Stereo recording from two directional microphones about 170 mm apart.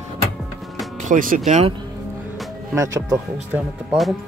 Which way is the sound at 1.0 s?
50° right (ahead or behind).